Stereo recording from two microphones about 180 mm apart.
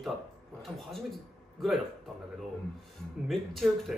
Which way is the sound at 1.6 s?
Centre (ahead or behind).